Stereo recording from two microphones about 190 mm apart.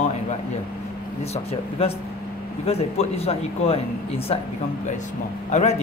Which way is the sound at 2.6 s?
35° left (ahead or behind).